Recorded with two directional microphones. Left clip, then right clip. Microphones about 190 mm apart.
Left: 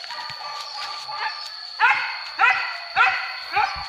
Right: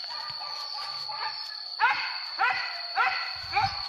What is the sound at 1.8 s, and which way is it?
Dog, 20° right (ahead or behind).